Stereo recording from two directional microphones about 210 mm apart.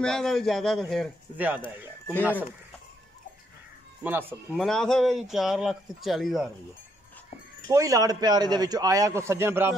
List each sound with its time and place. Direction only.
0.0 s a man's voice: centre (ahead or behind)
4.0 s a man's voice: 10° right (ahead or behind)
4.5 s a man's voice: centre (ahead or behind)
7.6 s a man's voice: 15° right (ahead or behind)